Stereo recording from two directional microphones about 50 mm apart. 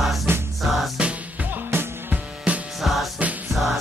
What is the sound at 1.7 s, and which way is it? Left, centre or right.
Music, right.